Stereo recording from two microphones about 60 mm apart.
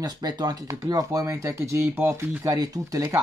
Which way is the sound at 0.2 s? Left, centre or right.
Right.